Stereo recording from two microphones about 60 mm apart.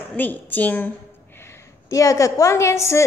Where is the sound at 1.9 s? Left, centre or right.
Left.